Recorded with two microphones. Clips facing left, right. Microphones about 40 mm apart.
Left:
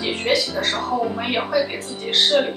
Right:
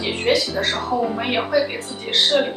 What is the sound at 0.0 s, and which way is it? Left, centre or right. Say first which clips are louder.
A woman's voice: right 1 dB; centre.